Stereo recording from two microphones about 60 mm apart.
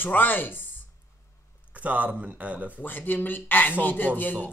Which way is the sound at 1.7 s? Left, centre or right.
Right.